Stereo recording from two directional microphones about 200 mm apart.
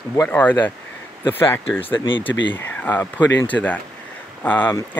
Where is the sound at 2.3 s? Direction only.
65° left (ahead or behind).